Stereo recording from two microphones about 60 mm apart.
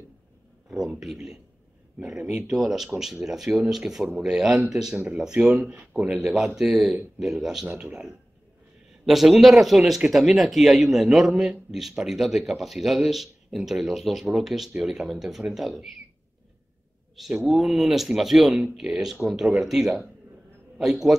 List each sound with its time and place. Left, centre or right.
0.8 s speech: centre
2.4 s a man's voice: centre
6.2 s a man's voice: centre
17.3 s a man's voice: centre